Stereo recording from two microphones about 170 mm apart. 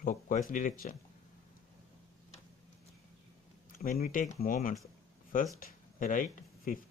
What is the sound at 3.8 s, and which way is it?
Speech, 60° left (ahead or behind).